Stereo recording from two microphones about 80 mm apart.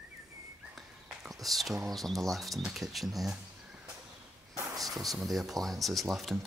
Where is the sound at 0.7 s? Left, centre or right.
Centre.